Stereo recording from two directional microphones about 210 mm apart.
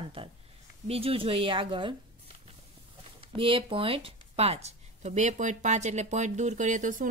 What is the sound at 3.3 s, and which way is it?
Speech, 25° right (ahead or behind).